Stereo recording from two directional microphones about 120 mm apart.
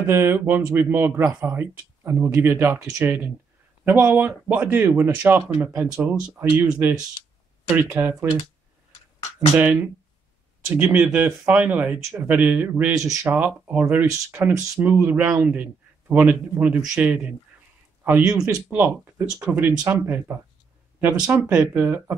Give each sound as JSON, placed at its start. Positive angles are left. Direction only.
{"t": 0.0, "sound": "a man's voice", "side_deg": -20}
{"t": 9.6, "sound": "a man's voice", "side_deg": -15}